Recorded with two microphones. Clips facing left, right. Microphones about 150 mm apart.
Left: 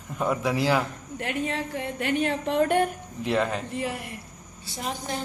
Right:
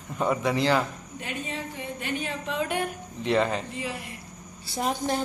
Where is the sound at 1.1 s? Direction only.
70° left (ahead or behind).